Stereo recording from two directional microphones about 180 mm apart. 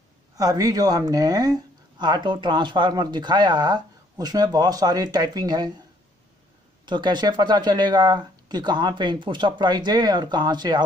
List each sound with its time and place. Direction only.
0.4 s speech: 20° right (ahead or behind)
6.9 s speech: 25° right (ahead or behind)